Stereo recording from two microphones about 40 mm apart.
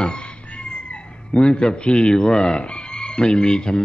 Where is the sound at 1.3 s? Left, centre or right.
Left.